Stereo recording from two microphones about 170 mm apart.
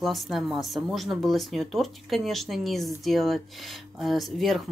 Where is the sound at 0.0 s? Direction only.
Centre (ahead or behind).